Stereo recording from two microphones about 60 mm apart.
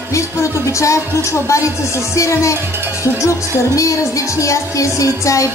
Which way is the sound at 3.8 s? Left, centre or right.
Left.